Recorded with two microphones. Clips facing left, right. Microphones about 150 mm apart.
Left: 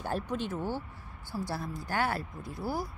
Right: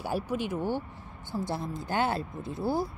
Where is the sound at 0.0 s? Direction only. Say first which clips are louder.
Right 2 dB; 10° right (ahead or behind).